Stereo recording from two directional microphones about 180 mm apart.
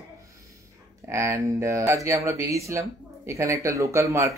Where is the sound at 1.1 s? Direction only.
15° right (ahead or behind).